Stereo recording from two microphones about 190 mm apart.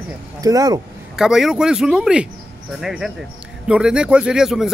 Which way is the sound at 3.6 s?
5° right (ahead or behind).